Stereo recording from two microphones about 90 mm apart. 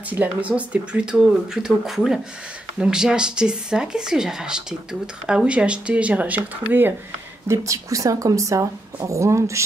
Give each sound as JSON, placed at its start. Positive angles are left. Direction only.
{"t": 0.1, "sound": "speech", "side_deg": -15}
{"t": 7.4, "sound": "a woman's voice", "side_deg": -35}